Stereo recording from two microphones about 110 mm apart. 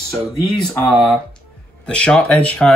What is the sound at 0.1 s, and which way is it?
Speech, 5° left (ahead or behind).